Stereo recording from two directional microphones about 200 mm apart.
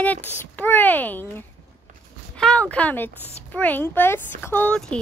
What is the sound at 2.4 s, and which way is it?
A woman's voice, 5° left (ahead or behind).